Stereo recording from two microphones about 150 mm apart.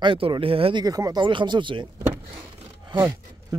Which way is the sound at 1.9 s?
20° right (ahead or behind).